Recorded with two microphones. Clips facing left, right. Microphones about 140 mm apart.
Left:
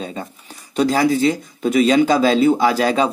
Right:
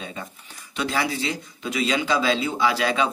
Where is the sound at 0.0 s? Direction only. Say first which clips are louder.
Left 7 dB; 35° left (ahead or behind).